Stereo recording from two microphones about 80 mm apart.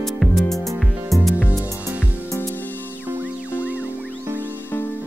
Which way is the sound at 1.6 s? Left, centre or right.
Right.